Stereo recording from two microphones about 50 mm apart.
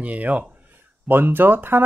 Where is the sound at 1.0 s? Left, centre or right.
Right.